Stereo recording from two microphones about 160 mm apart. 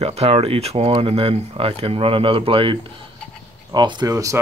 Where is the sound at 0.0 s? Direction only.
40° right (ahead or behind).